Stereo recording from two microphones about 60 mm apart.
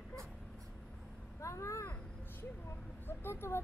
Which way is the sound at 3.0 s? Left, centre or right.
Left.